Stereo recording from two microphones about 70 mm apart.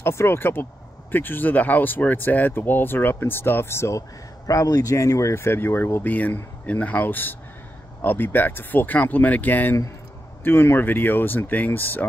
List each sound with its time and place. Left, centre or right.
0.0 s speech: left
4.5 s speech: left
6.1 s speech: left